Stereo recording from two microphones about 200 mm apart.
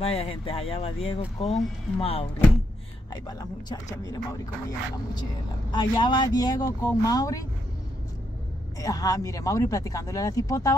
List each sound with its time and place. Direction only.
0.0 s speech: 30° left (ahead or behind)
5.7 s speech: 20° left (ahead or behind)
8.7 s speech: 15° left (ahead or behind)